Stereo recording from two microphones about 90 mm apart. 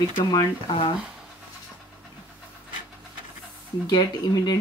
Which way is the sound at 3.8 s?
50° left (ahead or behind).